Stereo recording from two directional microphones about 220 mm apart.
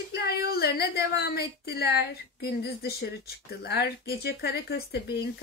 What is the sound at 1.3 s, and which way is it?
Speech, 45° left (ahead or behind).